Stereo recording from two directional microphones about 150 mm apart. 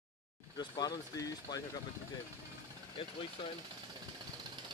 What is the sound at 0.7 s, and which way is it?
Speech, 25° left (ahead or behind).